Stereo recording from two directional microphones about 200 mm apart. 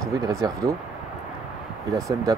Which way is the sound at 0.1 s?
15° right (ahead or behind).